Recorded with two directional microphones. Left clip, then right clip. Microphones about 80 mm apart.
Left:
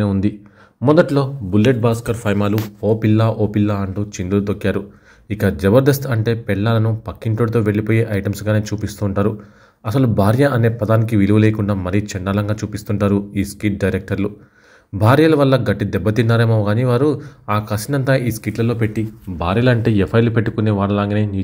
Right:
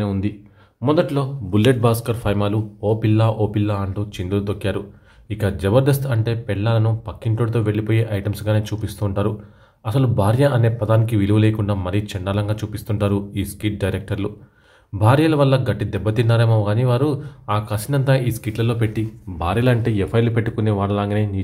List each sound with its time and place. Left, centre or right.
0.8 s speech: left
1.6 s speech: centre
2.8 s a man's voice: left
15.0 s a man's voice: left; by 18.8 s centre
19.3 s speech: left
20.1 s a man's voice: left